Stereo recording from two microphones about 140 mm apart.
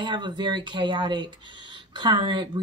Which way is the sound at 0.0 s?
35° right (ahead or behind).